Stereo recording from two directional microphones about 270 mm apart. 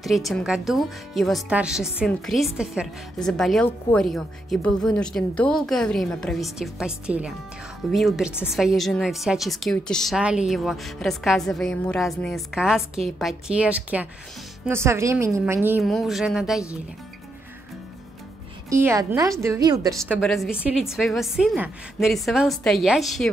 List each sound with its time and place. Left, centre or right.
0.0 s a woman's voice: centre
18.7 s a woman's voice: centre
20.0 s speech: centre